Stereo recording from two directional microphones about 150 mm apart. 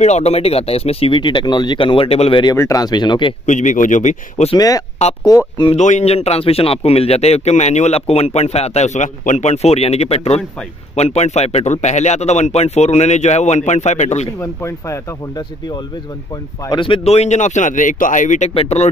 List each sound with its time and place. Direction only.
0.0 s speech: 45° left (ahead or behind)
2.4 s speech: 20° left (ahead or behind)
3.4 s speech: 55° left (ahead or behind)
4.6 s speech: 25° left (ahead or behind)
5.8 s speech: 50° left (ahead or behind)
14.4 s speech: 20° left (ahead or behind); by 18.5 s 55° left (ahead or behind)
18.5 s speech: 40° left (ahead or behind)